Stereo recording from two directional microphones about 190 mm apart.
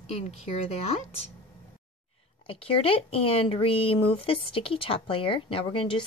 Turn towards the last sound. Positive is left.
turn(degrees=25)  # may be behind; listen again after turning